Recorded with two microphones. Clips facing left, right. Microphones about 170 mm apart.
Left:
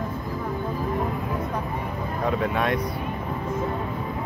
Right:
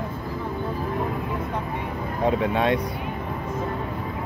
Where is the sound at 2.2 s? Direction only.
25° right (ahead or behind).